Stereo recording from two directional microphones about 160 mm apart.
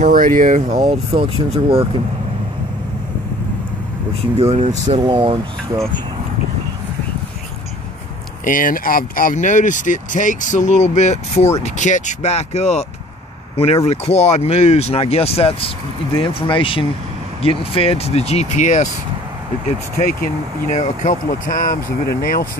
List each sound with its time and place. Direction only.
0.0 s speech: 55° right (ahead or behind)
0.9 s speech: 35° right (ahead or behind)
4.4 s speech: 40° right (ahead or behind)
4.9 s speech: 30° right (ahead or behind)
8.5 s speech: 60° left (ahead or behind); by 12.8 s 45° left (ahead or behind)
13.8 s speech: 40° left (ahead or behind)
20.0 s speech: 60° left (ahead or behind)